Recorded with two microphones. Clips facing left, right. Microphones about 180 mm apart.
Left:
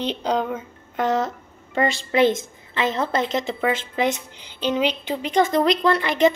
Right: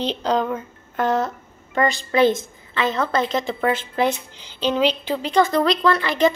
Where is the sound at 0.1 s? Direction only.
10° left (ahead or behind).